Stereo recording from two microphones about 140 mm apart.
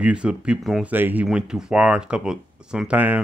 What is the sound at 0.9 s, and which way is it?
Speech, 15° right (ahead or behind).